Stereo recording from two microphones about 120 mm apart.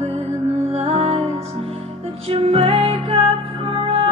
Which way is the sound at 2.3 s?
55° right (ahead or behind).